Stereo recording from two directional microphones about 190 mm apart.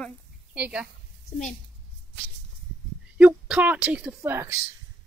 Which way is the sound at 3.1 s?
5° right (ahead or behind).